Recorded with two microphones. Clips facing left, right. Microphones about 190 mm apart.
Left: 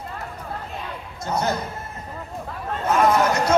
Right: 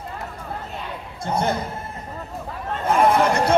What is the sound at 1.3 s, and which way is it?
Speech, 30° right (ahead or behind).